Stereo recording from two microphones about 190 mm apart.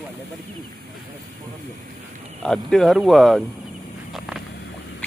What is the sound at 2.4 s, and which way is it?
Speech, 5° left (ahead or behind).